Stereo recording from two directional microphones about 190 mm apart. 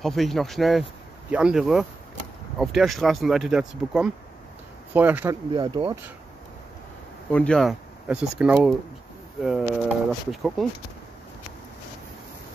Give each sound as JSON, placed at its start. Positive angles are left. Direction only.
{"t": 0.0, "sound": "speech", "side_deg": 0}
{"t": 5.5, "sound": "speech", "side_deg": -25}
{"t": 7.2, "sound": "speech", "side_deg": 5}